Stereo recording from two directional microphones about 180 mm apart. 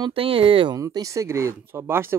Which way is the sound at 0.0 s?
30° right (ahead or behind).